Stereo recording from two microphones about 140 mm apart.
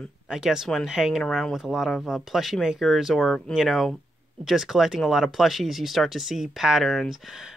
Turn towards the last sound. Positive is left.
turn(degrees=0)  # may be behind; listen again after turning